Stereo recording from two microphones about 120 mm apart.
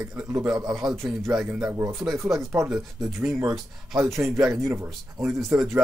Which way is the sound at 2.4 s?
25° right (ahead or behind).